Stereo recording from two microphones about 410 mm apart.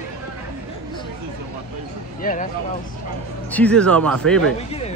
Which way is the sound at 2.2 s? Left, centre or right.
Centre.